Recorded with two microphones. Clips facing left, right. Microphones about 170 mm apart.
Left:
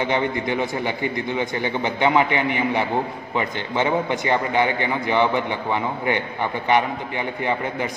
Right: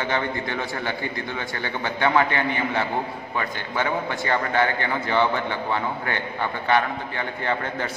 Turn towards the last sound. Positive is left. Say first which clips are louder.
# left 2 dB
turn(degrees=15)  # may be behind; listen again after turning